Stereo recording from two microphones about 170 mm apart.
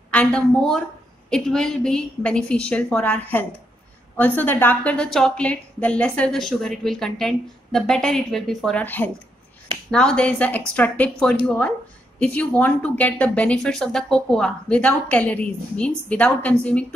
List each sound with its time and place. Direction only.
0.1 s a woman's voice: 5° left (ahead or behind)